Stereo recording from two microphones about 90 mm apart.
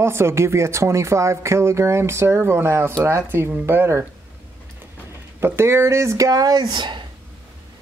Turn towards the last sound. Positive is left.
turn(degrees=-55)  # may be behind; listen again after turning